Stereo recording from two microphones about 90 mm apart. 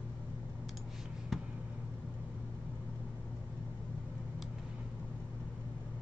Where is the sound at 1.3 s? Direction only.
Centre (ahead or behind).